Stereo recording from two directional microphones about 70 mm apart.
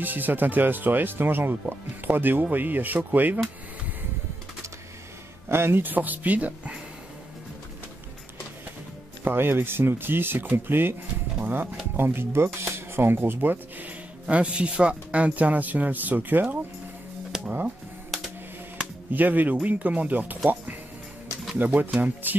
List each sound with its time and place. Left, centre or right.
0.0 s speech: right
5.5 s speech: right
9.2 s speech: right
18.1 s a sound: centre
19.1 s speech: right
21.5 s speech: right